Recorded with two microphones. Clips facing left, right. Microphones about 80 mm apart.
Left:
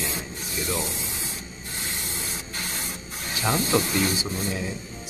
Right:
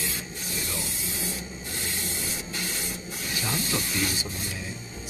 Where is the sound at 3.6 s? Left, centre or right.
Left.